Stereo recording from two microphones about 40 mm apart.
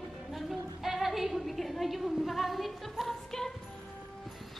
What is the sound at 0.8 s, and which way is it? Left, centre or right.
A woman's voice, centre.